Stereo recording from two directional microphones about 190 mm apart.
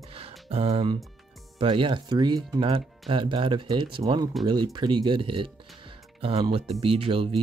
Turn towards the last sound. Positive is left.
turn(degrees=-30)  # may be behind; listen again after turning